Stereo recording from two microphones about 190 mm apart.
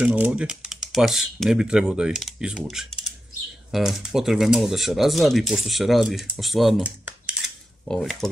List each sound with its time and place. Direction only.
0.0 s speech: 5° right (ahead or behind)
7.9 s speech: centre (ahead or behind)